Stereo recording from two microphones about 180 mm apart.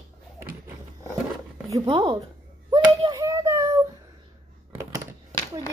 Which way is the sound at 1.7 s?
20° right (ahead or behind).